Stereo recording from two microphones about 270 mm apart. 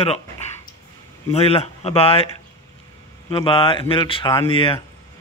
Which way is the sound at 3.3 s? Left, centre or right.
Centre.